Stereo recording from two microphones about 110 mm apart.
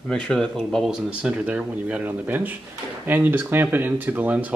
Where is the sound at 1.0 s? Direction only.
10° right (ahead or behind).